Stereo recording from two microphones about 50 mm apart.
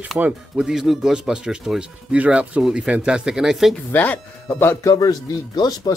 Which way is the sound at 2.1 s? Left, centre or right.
Right.